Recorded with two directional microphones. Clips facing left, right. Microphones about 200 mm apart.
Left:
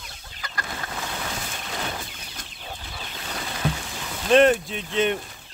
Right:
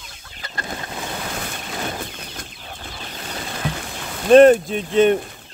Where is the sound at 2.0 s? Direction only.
55° right (ahead or behind).